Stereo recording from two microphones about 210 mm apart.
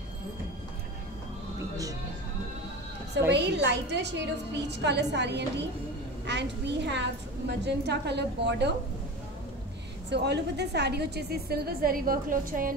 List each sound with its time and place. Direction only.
3.3 s a woman's voice: 55° right (ahead or behind)
10.0 s a woman's voice: 55° right (ahead or behind)